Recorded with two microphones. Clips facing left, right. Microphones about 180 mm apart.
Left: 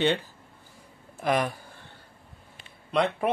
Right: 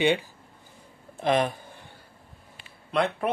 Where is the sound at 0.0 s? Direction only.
10° right (ahead or behind).